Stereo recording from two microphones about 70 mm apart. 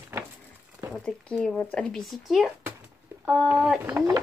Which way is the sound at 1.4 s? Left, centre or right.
Centre.